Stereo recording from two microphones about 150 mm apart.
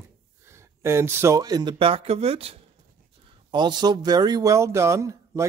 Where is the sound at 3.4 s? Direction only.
30° right (ahead or behind).